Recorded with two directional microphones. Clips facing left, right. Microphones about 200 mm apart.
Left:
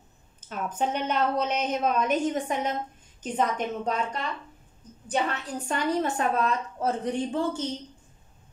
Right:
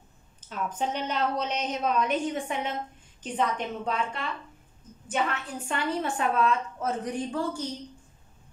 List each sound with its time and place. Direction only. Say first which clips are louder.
0.5 s a woman's voice: left 2 dB; 55° left (ahead or behind)
7.1 s a woman's voice: left 3 dB; 25° left (ahead or behind)